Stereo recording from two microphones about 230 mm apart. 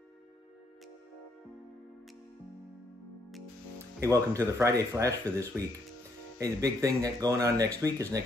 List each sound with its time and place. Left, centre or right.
4.0 s speech: centre